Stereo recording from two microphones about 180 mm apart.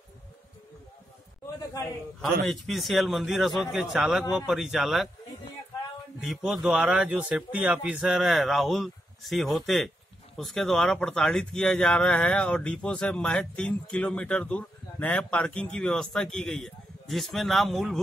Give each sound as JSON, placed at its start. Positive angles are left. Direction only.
{"t": 1.7, "sound": "a man's voice", "side_deg": 20}
{"t": 2.4, "sound": "speech", "side_deg": 0}
{"t": 6.2, "sound": "speech", "side_deg": 0}